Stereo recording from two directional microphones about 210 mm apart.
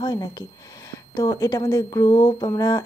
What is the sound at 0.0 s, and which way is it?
Speech, 20° left (ahead or behind).